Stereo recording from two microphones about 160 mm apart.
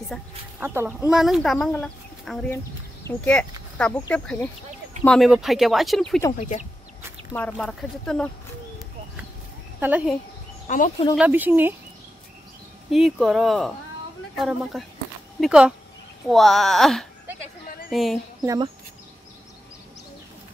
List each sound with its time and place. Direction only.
0.6 s speech: 10° right (ahead or behind)
2.5 s speech: 15° left (ahead or behind)
7.3 s speech: 5° left (ahead or behind)
9.8 s speech: 10° right (ahead or behind)
10.7 s speech: 55° left (ahead or behind)
11.1 s speech: 10° right (ahead or behind)
12.9 s speech: centre (ahead or behind)
18.4 s speech: 20° right (ahead or behind)